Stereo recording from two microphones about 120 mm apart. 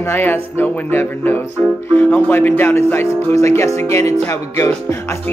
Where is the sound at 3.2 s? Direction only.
25° left (ahead or behind).